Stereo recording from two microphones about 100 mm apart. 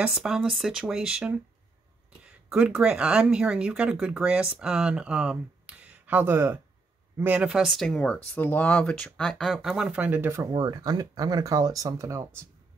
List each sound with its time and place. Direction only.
0.1 s speech: 5° right (ahead or behind)
2.5 s speech: 10° right (ahead or behind)
7.3 s speech: 5° right (ahead or behind); by 10.5 s 25° right (ahead or behind)
10.5 s speech: 40° right (ahead or behind)